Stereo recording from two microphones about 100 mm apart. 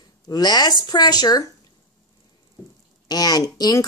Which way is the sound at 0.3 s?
45° left (ahead or behind).